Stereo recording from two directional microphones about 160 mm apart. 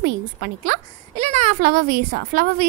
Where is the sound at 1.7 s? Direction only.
70° right (ahead or behind).